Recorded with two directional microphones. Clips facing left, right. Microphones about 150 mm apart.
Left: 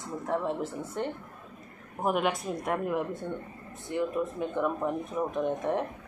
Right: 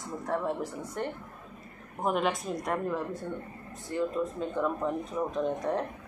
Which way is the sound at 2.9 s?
20° left (ahead or behind).